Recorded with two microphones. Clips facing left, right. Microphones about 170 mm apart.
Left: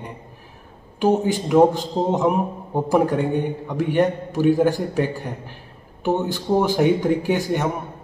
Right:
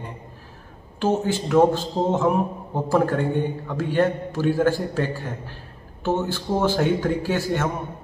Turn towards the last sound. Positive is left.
turn(degrees=15)  # may be behind; listen again after turning